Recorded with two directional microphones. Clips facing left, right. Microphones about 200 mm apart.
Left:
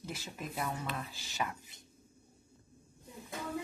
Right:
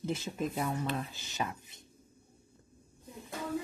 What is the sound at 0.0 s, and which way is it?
Speech, 20° right (ahead or behind).